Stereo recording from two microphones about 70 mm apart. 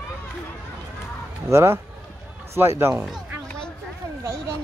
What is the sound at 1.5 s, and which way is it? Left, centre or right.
Speech, right.